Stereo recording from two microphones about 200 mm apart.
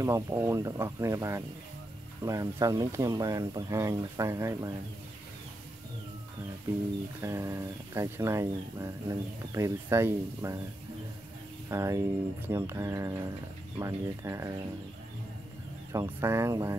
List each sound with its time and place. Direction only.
0.0 s speech: 15° right (ahead or behind)
7.2 s speech: 15° right (ahead or behind)
11.7 s speech: 15° right (ahead or behind)
15.9 s speech: 15° right (ahead or behind)